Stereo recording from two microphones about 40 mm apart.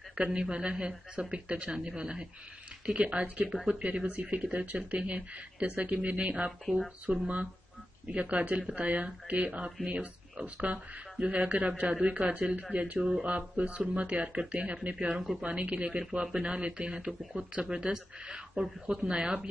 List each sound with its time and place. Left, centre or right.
0.1 s speech: right